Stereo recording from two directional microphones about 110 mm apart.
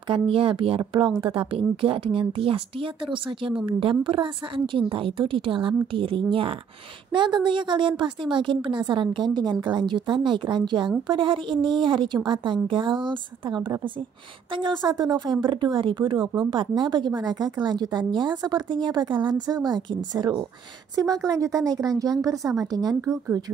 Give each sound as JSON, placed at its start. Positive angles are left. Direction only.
{"t": 0.1, "sound": "a woman's voice", "side_deg": -55}